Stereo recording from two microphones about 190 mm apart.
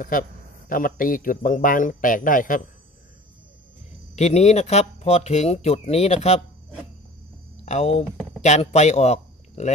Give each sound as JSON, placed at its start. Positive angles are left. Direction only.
{"t": 0.7, "sound": "speech", "side_deg": 45}
{"t": 4.1, "sound": "speech", "side_deg": 35}
{"t": 7.6, "sound": "speech", "side_deg": 35}